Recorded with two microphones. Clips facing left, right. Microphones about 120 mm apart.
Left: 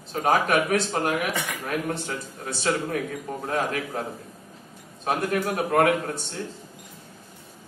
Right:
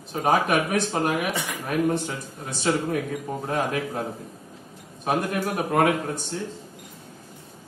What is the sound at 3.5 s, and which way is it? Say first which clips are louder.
Speech: right 1 dB; 20° right (ahead or behind).